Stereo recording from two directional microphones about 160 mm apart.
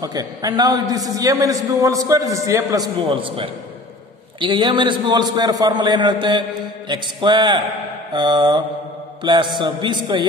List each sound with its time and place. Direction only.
0.0 s a man's voice: 25° right (ahead or behind)